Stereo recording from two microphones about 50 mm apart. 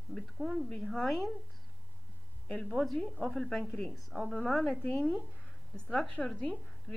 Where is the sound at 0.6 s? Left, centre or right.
Centre.